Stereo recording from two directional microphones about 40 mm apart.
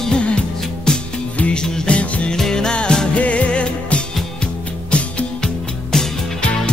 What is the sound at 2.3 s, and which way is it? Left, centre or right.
Music, centre.